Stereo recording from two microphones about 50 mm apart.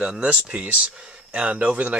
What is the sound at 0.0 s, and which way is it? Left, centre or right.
Speech, centre.